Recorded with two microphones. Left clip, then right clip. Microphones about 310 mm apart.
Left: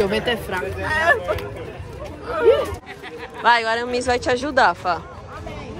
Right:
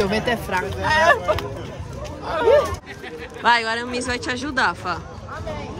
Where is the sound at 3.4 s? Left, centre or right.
Centre.